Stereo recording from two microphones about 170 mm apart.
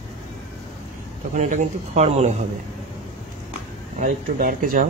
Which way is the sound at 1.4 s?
45° right (ahead or behind).